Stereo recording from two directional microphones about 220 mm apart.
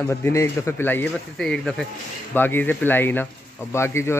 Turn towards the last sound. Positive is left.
turn(degrees=10)  # may be behind; listen again after turning